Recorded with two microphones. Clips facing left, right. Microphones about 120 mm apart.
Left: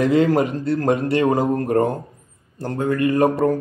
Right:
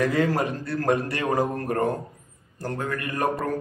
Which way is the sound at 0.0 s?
25° left (ahead or behind).